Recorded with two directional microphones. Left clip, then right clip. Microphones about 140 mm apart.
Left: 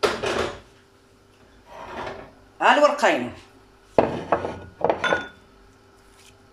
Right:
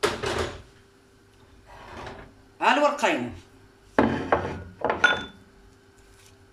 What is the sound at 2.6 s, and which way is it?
Speech, 25° right (ahead or behind).